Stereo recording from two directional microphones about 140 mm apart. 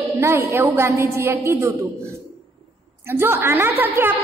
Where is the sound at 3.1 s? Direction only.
15° right (ahead or behind).